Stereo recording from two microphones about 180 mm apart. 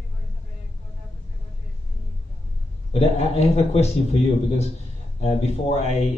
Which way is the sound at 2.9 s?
35° left (ahead or behind).